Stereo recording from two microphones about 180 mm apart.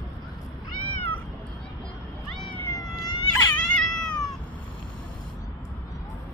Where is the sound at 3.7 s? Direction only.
5° left (ahead or behind).